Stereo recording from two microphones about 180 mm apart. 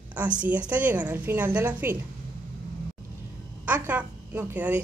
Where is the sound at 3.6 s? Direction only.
10° right (ahead or behind).